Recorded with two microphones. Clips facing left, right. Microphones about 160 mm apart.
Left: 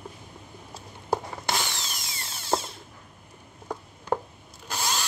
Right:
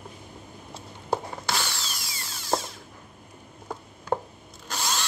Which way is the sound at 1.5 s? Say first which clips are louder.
Left 1 dB; 20° left (ahead or behind).